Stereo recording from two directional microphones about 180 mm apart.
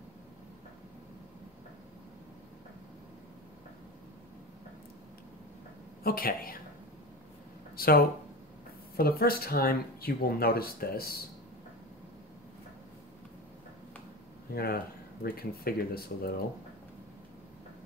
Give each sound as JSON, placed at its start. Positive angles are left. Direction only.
{"t": 6.0, "sound": "a woman's voice", "side_deg": 55}
{"t": 7.7, "sound": "a sound", "side_deg": 55}
{"t": 8.9, "sound": "speech", "side_deg": 55}
{"t": 14.5, "sound": "speech", "side_deg": 55}